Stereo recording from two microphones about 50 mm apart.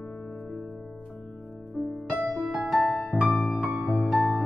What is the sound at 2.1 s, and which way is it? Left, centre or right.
Music, centre.